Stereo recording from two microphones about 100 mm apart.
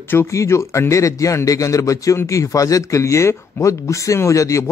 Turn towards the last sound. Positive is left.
turn(degrees=30)  # may be behind; listen again after turning